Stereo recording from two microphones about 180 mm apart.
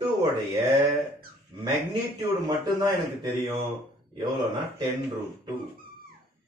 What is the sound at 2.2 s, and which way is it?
A man's voice, 25° right (ahead or behind).